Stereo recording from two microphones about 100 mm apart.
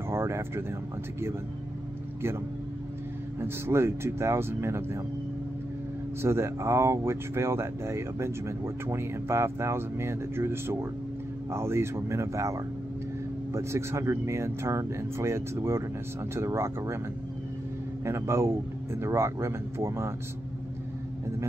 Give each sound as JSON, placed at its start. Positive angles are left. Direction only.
{"t": 0.1, "sound": "a sound", "side_deg": -25}
{"t": 3.3, "sound": "speech", "side_deg": -25}
{"t": 6.2, "sound": "speech", "side_deg": -25}
{"t": 18.0, "sound": "speech", "side_deg": -30}